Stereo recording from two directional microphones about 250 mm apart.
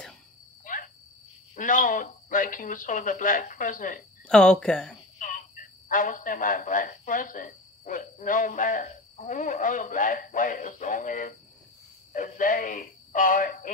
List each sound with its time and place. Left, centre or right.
1.5 s speech: left
4.3 s speech: centre
5.2 s speech: left